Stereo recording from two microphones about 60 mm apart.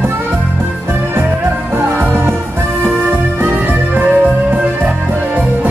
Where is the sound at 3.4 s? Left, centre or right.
Right.